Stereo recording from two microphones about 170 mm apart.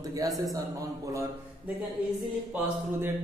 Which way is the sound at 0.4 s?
20° right (ahead or behind).